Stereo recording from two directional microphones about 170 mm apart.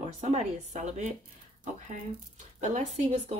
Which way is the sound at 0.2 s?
45° right (ahead or behind).